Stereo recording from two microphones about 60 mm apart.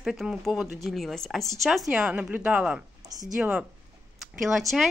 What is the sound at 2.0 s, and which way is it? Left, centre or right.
Speech, right.